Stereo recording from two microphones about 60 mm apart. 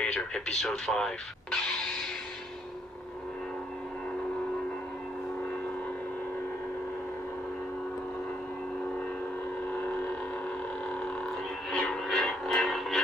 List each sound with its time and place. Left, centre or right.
0.0 s speech: centre
9.7 s hum: left
11.2 s a sound: centre